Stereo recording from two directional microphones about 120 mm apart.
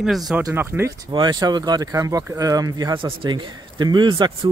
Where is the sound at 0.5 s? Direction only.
20° right (ahead or behind).